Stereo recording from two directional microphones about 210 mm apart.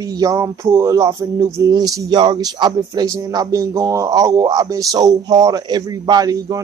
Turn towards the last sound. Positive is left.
turn(degrees=-15)  # may be behind; listen again after turning